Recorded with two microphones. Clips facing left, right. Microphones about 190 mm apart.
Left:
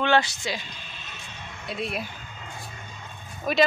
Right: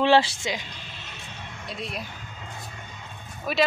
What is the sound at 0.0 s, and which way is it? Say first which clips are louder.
Speech: right 3 dB; 30° right (ahead or behind).